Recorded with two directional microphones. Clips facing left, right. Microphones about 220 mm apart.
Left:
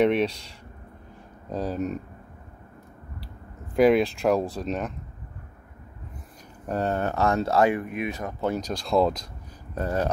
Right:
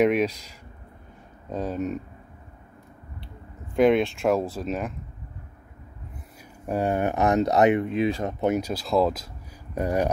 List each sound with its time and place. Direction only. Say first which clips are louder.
0.0 s speech: right 1 dB; 10° right (ahead or behind)
0.3 s speech: left 1 dB; 30° left (ahead or behind)
1.5 s speech: even; centre (ahead or behind)
3.7 s speech: even; 5° left (ahead or behind)
6.6 s speech: right 2 dB; 10° right (ahead or behind)
8.5 s speech: even; 5° right (ahead or behind)
9.8 s speech: right 2 dB; 15° right (ahead or behind)